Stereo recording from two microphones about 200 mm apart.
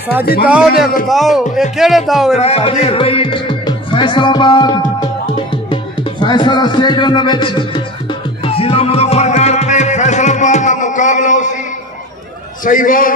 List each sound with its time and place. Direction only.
0.2 s a man's voice: 50° left (ahead or behind)
1.0 s speech: centre (ahead or behind)
2.3 s speech: 30° left (ahead or behind)
6.2 s music: 20° left (ahead or behind); by 11.5 s 40° left (ahead or behind)
12.6 s a man's voice: 40° left (ahead or behind)